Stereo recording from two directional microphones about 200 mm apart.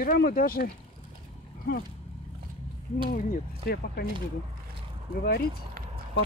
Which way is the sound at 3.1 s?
50° left (ahead or behind).